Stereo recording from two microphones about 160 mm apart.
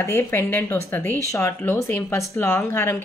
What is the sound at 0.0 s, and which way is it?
Speech, 15° left (ahead or behind).